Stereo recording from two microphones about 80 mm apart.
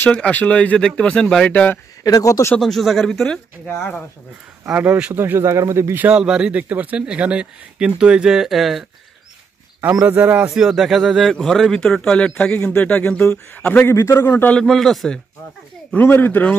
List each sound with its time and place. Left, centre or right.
0.0 s a man's voice: centre
2.0 s speech: left
2.6 s a man's voice: centre
4.7 s a man's voice: centre
5.1 s speech: right
5.9 s speech: centre
10.0 s a man's voice: centre
10.5 s a man's voice: centre; by 13.9 s left
13.9 s a man's voice: left
14.5 s a man's voice: centre
15.9 s a man's voice: left